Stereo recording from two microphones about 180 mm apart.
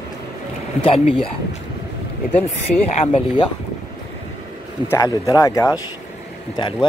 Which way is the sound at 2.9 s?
30° left (ahead or behind).